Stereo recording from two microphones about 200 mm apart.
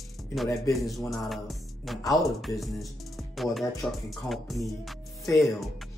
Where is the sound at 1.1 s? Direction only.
Centre (ahead or behind).